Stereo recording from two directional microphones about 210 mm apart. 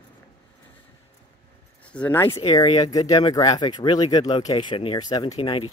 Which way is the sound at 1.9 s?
10° left (ahead or behind).